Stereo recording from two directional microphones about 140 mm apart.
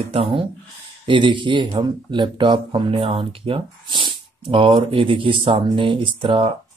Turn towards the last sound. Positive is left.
turn(degrees=-40)  # may be behind; listen again after turning